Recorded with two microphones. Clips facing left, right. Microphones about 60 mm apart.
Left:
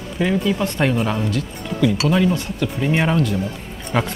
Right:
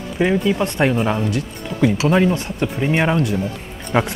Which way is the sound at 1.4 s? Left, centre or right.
Right.